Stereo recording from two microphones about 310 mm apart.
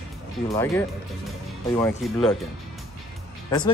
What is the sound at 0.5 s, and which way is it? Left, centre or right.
Speech, centre.